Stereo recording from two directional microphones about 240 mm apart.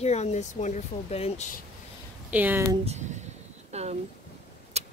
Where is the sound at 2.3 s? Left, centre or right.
Centre.